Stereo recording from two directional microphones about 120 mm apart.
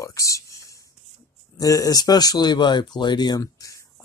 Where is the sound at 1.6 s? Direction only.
30° left (ahead or behind).